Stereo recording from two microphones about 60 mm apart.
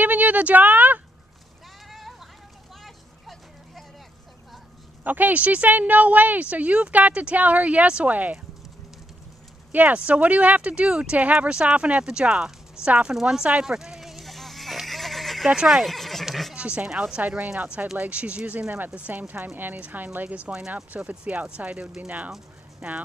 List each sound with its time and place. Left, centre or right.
0.0 s a sound: right
1.9 s vehicle: centre
2.8 s a sound: centre
5.0 s a woman's voice: right
9.7 s a woman's voice: right; by 13.5 s centre
13.7 s neigh: centre
15.5 s speech: centre
15.8 s a sound: centre
16.5 s speech: centre
17.6 s a woman's voice: right
20.4 s a woman's voice: centre